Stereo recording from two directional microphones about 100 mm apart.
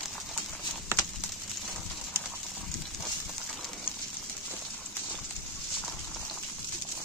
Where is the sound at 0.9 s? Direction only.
25° right (ahead or behind).